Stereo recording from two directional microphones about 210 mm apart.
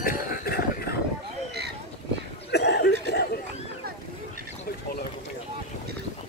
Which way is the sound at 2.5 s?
55° left (ahead or behind).